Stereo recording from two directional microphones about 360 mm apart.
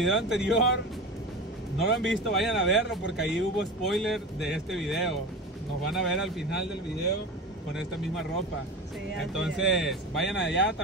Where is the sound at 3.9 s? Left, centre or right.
Centre.